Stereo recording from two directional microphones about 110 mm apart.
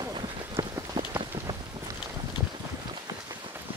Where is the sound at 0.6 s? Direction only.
45° right (ahead or behind).